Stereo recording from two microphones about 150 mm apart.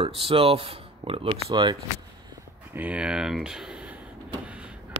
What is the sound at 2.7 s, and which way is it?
Speech, 10° right (ahead or behind).